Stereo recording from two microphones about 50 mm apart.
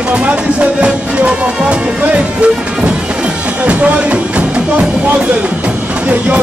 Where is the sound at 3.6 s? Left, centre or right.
Right.